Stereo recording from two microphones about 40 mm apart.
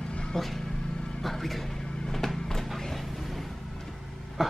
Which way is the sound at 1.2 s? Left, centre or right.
Centre.